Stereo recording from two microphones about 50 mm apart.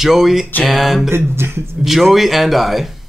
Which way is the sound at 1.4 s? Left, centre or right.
Right.